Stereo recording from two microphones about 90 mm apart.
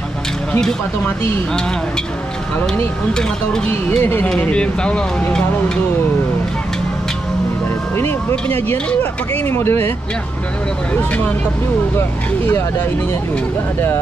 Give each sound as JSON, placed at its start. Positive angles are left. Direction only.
{"t": 0.5, "sound": "speech", "side_deg": 5}
{"t": 3.1, "sound": "speech", "side_deg": 10}
{"t": 4.0, "sound": "speech", "side_deg": 20}
{"t": 7.9, "sound": "speech", "side_deg": 25}